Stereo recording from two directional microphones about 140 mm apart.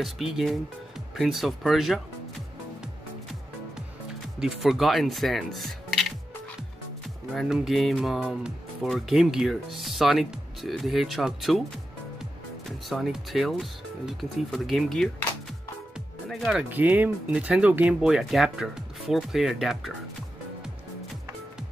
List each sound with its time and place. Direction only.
0.0 s speech: centre (ahead or behind)
4.4 s speech: 5° right (ahead or behind)
7.3 s speech: 5° right (ahead or behind)
12.6 s speech: centre (ahead or behind)
16.3 s speech: centre (ahead or behind)
16.7 s speech: 10° right (ahead or behind)